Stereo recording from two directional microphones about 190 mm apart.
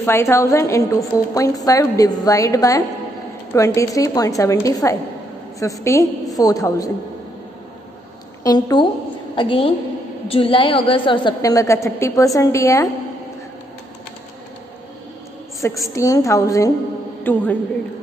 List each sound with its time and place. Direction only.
0.0 s a woman's voice: 15° left (ahead or behind)
8.5 s a woman's voice: 20° left (ahead or behind)
15.6 s a woman's voice: 15° left (ahead or behind)